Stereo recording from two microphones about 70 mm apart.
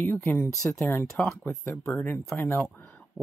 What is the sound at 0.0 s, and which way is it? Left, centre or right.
Speech, left.